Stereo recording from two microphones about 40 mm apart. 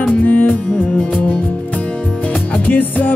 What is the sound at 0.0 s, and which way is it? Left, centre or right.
Music, left.